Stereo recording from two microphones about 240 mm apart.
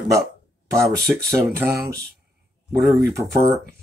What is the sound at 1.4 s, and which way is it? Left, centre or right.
Speech, centre.